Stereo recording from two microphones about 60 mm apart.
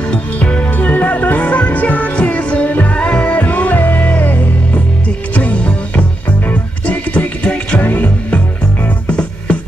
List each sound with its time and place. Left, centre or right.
0.1 s music: centre
7.8 s music: left
8.8 s music: centre